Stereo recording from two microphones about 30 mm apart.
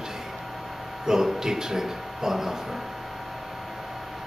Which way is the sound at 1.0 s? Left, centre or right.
Centre.